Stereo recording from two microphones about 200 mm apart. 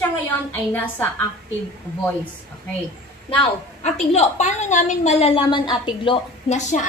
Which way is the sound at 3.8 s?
35° left (ahead or behind).